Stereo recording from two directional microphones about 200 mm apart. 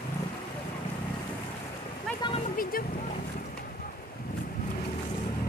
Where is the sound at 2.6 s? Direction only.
45° left (ahead or behind).